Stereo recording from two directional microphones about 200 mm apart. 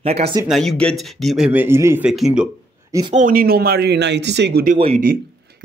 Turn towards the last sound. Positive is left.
turn(degrees=-30)  # may be behind; listen again after turning